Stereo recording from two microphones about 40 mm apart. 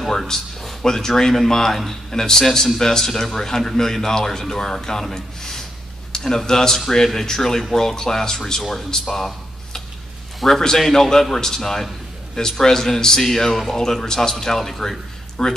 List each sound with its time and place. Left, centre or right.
0.1 s a man's voice: centre